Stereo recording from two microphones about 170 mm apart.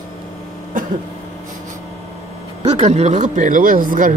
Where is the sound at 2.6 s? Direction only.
40° right (ahead or behind).